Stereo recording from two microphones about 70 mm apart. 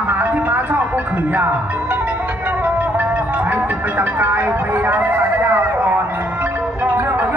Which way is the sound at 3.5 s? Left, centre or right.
Right.